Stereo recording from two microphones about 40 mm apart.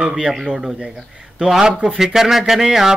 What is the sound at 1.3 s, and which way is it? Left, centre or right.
Speech, centre.